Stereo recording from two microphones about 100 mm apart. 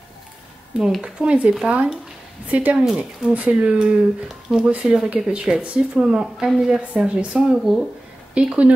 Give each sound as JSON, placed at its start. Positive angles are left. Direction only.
{"t": 0.7, "sound": "speech", "side_deg": -10}